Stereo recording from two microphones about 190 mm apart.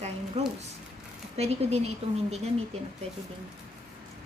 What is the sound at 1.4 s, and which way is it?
A woman's voice, 35° right (ahead or behind).